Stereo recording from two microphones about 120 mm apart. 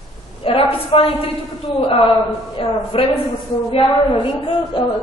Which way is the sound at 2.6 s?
50° left (ahead or behind).